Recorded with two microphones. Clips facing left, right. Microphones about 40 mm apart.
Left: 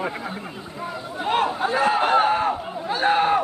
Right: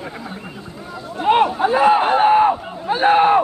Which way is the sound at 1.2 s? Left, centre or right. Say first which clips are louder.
Right 7 dB; right.